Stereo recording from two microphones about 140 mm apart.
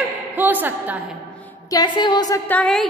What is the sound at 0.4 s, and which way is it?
Speech, 15° right (ahead or behind).